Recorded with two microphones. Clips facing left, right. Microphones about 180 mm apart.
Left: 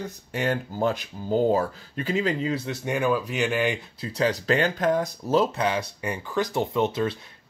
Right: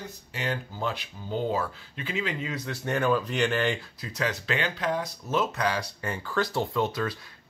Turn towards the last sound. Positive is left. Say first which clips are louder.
# left 4 dB
turn(degrees=25)  # may be behind; listen again after turning